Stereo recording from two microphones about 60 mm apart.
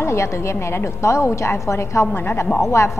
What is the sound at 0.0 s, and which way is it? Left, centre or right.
A woman's voice, left.